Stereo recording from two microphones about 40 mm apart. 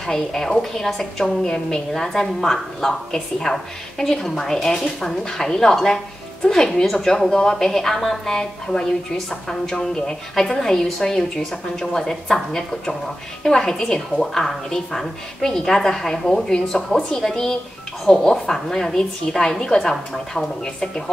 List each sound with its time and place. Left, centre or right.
0.0 s a woman's voice: centre